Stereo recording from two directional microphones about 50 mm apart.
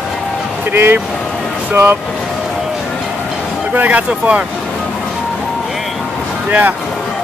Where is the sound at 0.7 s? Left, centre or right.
Right.